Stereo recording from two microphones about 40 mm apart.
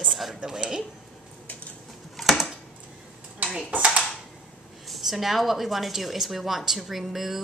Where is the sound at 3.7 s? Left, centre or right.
Right.